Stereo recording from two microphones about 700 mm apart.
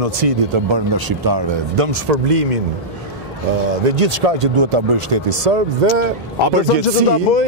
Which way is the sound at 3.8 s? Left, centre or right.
Right.